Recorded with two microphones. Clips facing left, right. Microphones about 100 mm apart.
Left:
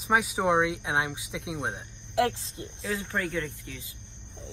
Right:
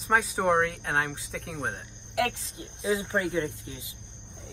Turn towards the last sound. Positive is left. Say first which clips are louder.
# right 3 dB
turn(degrees=-20)  # may be behind; listen again after turning